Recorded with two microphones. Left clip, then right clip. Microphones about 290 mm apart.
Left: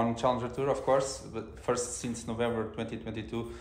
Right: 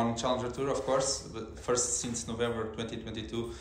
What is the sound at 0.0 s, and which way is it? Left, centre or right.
Speech, left.